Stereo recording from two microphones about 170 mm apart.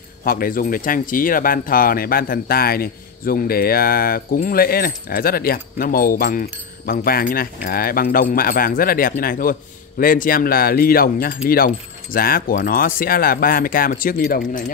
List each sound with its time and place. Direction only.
0.2 s speech: 55° left (ahead or behind)